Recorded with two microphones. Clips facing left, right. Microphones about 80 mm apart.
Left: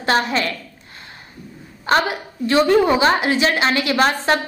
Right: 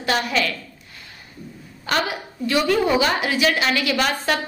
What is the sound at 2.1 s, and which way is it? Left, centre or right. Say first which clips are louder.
A woman's voice: left 4 dB; left.